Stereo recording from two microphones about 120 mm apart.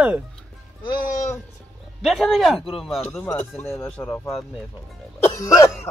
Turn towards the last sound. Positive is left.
turn(degrees=25)  # may be behind; listen again after turning